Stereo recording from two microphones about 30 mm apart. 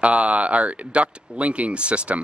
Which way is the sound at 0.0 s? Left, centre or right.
Right.